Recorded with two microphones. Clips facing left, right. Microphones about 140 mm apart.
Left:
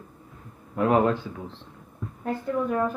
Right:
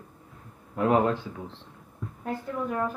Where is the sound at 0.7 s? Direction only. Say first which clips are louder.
Left 2 dB; 25° right (ahead or behind).